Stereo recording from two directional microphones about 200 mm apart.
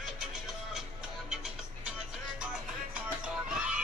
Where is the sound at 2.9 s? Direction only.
5° right (ahead or behind).